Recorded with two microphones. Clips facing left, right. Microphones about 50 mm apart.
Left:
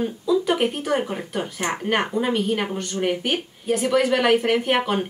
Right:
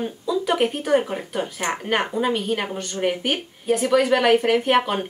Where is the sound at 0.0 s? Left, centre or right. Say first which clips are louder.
Left 3 dB; centre.